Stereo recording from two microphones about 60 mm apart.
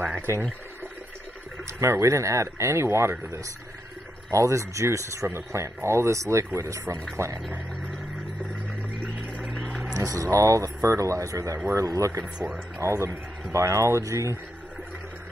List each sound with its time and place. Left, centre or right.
1.7 s speech: right
4.3 s speech: right
9.9 s speech: right